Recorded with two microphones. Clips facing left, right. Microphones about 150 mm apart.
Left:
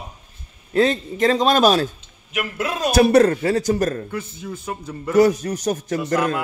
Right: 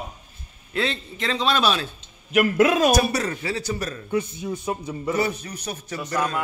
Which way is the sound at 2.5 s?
90° right.